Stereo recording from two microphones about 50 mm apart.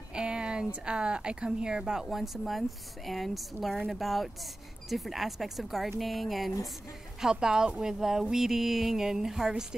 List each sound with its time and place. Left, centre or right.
0.1 s a sound: centre
0.8 s speech: centre
7.2 s speech: centre